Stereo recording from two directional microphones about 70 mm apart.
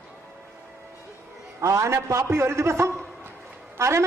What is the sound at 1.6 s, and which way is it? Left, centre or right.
A man's voice, right.